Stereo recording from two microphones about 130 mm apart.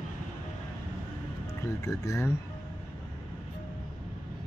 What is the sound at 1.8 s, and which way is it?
Speech, 25° left (ahead or behind).